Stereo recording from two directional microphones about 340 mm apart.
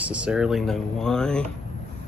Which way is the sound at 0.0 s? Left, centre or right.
Centre.